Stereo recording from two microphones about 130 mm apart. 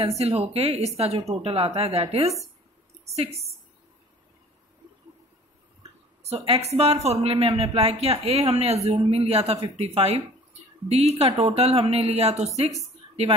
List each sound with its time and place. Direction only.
0.0 s speech: 55° right (ahead or behind)
6.2 s speech: 50° right (ahead or behind)